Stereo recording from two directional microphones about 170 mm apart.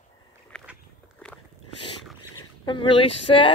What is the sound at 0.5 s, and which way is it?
Walk, 5° left (ahead or behind).